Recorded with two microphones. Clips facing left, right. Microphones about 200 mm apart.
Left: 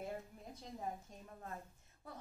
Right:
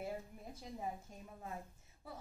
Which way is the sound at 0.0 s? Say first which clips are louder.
Right 1 dB; 5° right (ahead or behind).